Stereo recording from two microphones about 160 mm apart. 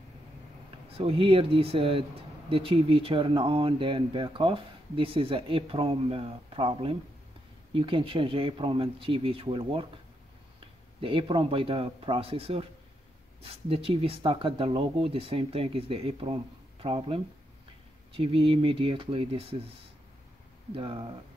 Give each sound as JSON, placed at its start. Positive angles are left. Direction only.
{"t": 0.9, "sound": "speech", "side_deg": -35}
{"t": 11.0, "sound": "speech", "side_deg": -35}
{"t": 20.7, "sound": "speech", "side_deg": -35}